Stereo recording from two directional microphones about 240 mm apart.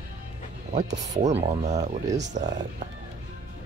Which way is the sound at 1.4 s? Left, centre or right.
Right.